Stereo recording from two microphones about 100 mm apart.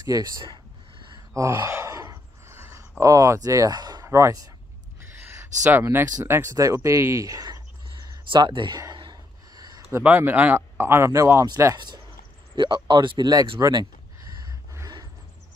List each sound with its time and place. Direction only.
0.0 s a sound: 40° right (ahead or behind)
1.3 s gasp: 30° right (ahead or behind)
3.0 s speech: 35° right (ahead or behind)
4.0 s speech: 30° right (ahead or behind)
5.1 s a sound: 20° right (ahead or behind)
6.2 s speech: 25° right (ahead or behind); by 8.7 s 50° right (ahead or behind)
8.9 s gasp: 45° right (ahead or behind)
10.0 s speech: 15° right (ahead or behind); by 13.5 s 45° right (ahead or behind)
13.6 s a sound: 40° right (ahead or behind)